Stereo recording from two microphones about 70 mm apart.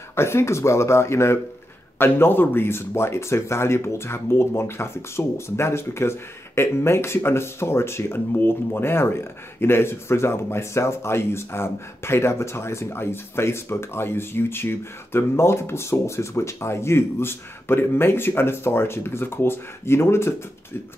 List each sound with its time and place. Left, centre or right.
0.1 s speech: left